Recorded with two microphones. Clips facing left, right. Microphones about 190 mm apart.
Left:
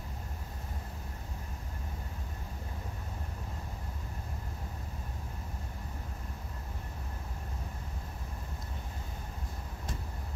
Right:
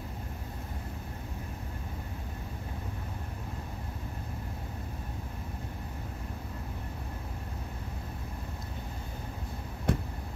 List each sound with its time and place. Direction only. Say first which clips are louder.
9.9 s vehicle: right 13 dB; 60° right (ahead or behind)